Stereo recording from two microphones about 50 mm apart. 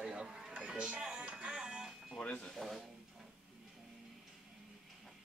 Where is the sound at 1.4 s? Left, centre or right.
Centre.